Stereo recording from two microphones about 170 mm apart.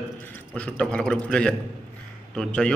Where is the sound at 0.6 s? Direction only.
5° left (ahead or behind).